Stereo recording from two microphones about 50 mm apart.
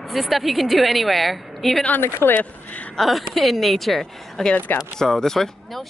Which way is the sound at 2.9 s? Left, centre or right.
Centre.